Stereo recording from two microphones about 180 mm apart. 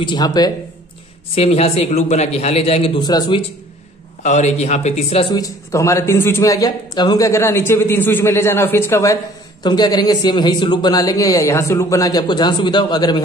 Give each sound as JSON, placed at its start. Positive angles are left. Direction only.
{"t": 0.0, "sound": "speech", "side_deg": 25}
{"t": 1.3, "sound": "a man's voice", "side_deg": 35}
{"t": 4.2, "sound": "a man's voice", "side_deg": 40}
{"t": 5.3, "sound": "speech", "side_deg": 20}